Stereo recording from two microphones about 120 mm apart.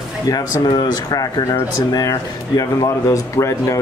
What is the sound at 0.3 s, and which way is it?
Speech, 35° left (ahead or behind).